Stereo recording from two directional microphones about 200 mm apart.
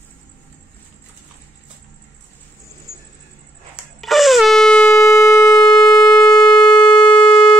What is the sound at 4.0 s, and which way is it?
Shofar, centre (ahead or behind).